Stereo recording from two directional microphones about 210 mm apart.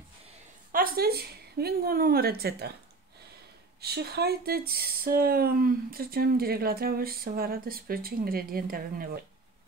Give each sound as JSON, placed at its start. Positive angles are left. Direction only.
{"t": 0.7, "sound": "a woman's voice", "side_deg": -45}
{"t": 3.8, "sound": "speech", "side_deg": -50}